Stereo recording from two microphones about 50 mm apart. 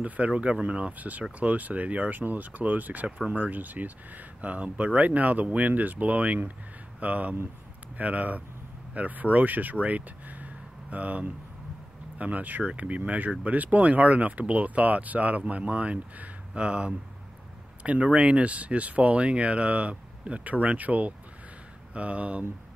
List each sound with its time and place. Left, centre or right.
0.0 s speech: right